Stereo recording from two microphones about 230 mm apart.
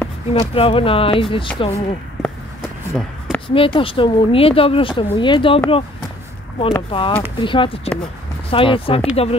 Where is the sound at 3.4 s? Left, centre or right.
Left.